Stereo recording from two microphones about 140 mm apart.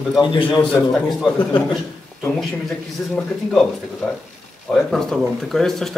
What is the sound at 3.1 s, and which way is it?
Speech, centre (ahead or behind).